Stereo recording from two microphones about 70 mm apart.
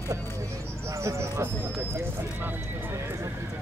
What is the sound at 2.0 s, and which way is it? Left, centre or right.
Horse, right.